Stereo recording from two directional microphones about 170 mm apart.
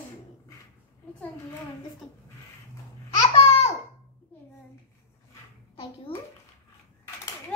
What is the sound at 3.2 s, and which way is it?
Babbling, 40° left (ahead or behind).